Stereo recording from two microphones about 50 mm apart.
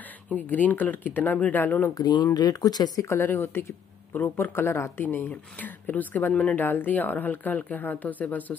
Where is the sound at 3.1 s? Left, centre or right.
Left.